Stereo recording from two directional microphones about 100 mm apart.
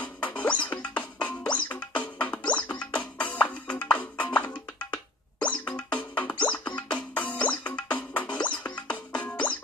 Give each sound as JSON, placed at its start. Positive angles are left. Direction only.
{"t": 0.0, "sound": "music", "side_deg": 15}